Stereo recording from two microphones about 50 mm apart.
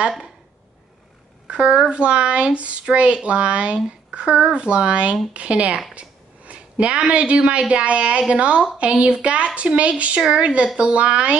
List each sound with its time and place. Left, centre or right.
1.5 s speech: centre